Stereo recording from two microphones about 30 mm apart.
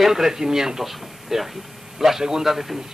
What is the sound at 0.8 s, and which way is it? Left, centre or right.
A man's voice, centre.